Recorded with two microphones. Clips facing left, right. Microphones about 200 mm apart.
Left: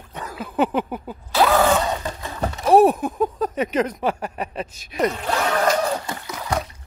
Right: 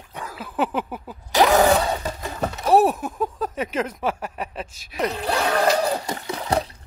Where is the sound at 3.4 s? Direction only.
5° right (ahead or behind).